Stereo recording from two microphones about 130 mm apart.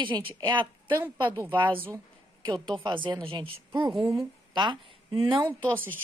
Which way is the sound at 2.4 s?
35° right (ahead or behind).